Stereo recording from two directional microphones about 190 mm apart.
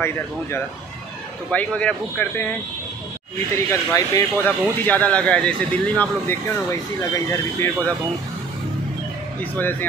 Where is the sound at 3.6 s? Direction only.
15° left (ahead or behind).